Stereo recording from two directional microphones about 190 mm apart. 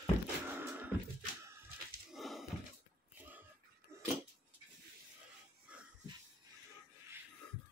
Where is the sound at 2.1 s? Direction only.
Centre (ahead or behind).